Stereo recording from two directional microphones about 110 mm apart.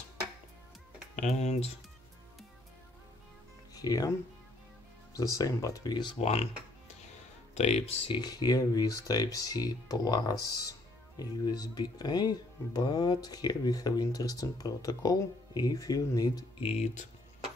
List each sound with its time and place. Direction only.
1.2 s speech: 75° left (ahead or behind)
3.7 s speech: 35° left (ahead or behind)
5.1 s speech: 30° left (ahead or behind)
6.1 s speech: 65° left (ahead or behind)
7.5 s speech: 80° left
8.1 s speech: 35° left (ahead or behind)
16.5 s speech: 70° left (ahead or behind); by 17.0 s 85° left